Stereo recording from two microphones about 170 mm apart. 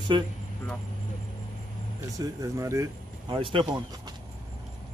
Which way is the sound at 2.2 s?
20° right (ahead or behind).